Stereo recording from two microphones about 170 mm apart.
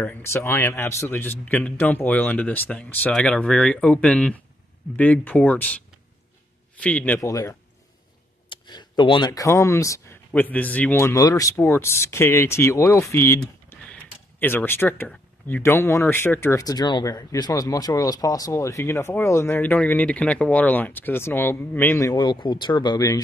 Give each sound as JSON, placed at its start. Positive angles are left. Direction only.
{"t": 0.0, "sound": "speech", "side_deg": 10}
{"t": 7.2, "sound": "speech", "side_deg": 20}